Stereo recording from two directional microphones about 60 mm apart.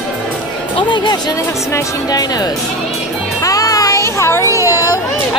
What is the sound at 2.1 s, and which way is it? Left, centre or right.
Speech, left.